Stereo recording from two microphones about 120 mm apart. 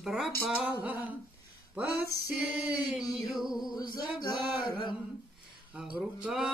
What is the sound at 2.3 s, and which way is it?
Female singing, 10° right (ahead or behind).